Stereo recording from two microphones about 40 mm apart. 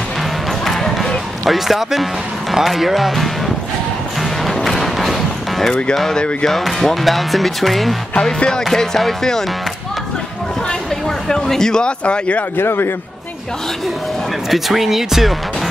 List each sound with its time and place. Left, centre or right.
1.4 s speech: centre
4.6 s music: centre
6.4 s speech: centre
8.6 s music: centre
11.2 s music: centre
12.0 s speech: left
12.5 s a man's voice: left
14.5 s speech: centre